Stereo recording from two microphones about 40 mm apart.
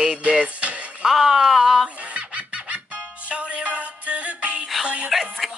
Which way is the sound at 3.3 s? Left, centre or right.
Right.